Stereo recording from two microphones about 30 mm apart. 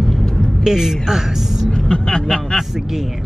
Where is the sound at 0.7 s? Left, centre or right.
Centre.